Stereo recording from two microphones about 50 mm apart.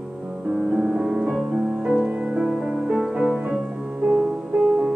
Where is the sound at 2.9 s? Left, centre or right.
Centre.